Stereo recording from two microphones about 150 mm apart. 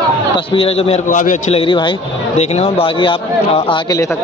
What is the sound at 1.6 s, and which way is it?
Speech, 35° left (ahead or behind).